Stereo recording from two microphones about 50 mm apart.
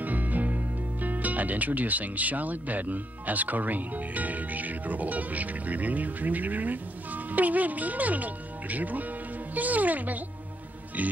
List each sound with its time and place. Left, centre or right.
0.0 s speech: right
11.0 s music: right